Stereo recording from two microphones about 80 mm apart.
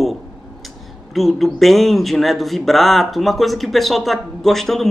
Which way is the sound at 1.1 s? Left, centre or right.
Centre.